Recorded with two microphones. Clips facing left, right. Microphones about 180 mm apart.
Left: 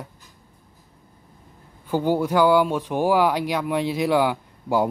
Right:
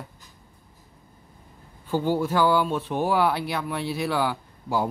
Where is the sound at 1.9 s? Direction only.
15° left (ahead or behind).